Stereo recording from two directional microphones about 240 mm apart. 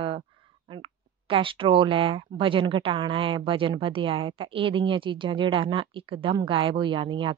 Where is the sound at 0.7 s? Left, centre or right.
Right.